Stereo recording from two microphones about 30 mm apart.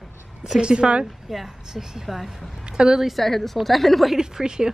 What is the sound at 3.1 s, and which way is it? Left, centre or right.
Speech, centre.